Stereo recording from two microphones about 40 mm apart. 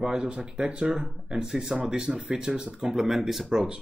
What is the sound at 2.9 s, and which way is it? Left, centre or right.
Speech, centre.